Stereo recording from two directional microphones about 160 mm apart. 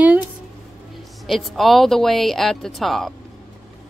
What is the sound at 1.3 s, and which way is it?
Speech, centre (ahead or behind).